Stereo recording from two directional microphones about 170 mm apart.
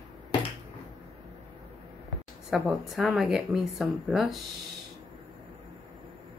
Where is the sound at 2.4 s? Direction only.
Centre (ahead or behind).